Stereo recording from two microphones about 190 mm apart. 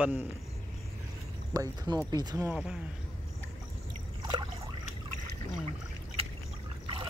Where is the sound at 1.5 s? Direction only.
20° right (ahead or behind).